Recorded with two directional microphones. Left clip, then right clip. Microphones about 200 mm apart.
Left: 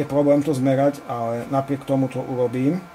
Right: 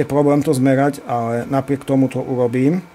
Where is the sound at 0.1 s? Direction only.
55° right (ahead or behind).